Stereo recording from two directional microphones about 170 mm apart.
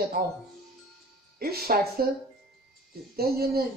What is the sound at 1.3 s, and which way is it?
Speech, 65° right (ahead or behind).